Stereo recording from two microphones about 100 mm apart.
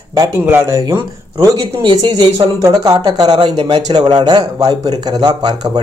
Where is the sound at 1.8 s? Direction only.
50° right (ahead or behind).